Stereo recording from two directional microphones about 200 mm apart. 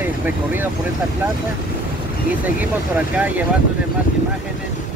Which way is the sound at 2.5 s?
10° right (ahead or behind).